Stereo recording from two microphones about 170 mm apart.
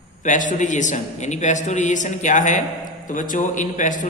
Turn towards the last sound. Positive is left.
turn(degrees=50)  # may be behind; listen again after turning